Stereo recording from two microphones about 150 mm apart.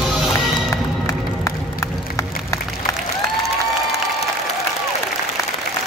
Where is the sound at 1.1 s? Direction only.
20° left (ahead or behind).